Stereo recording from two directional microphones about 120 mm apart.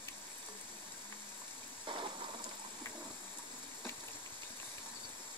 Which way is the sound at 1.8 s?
45° right (ahead or behind).